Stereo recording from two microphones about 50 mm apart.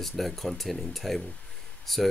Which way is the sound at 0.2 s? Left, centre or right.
Centre.